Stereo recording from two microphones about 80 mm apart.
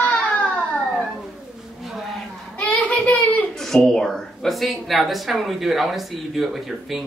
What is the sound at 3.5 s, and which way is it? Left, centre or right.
Speech, centre.